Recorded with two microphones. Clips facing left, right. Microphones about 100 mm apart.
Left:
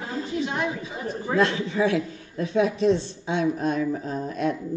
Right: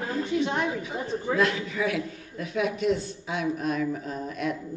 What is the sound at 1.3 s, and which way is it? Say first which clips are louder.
A man's voice: left 3 dB; 30° left (ahead or behind).